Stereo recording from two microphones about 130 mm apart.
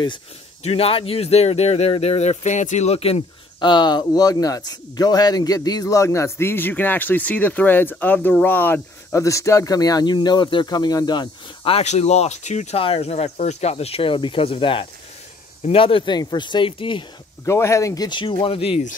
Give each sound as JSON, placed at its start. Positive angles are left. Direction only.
{"t": 0.7, "sound": "speech", "side_deg": 50}
{"t": 11.7, "sound": "speech", "side_deg": 55}
{"t": 17.5, "sound": "speech", "side_deg": 20}